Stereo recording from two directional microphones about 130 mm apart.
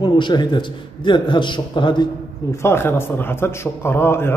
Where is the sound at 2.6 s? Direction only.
20° left (ahead or behind).